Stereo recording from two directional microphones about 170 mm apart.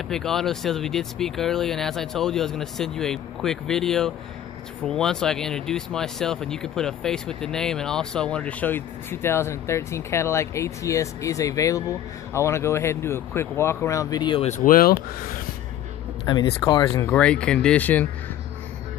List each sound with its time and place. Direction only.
0.1 s speech: centre (ahead or behind); by 14.5 s 30° left (ahead or behind)
14.5 s speech: 55° left (ahead or behind)
16.3 s speech: 25° left (ahead or behind)
17.2 s speech: 5° left (ahead or behind)